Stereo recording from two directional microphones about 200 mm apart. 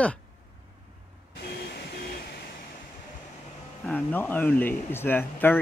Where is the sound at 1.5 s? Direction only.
55° left (ahead or behind).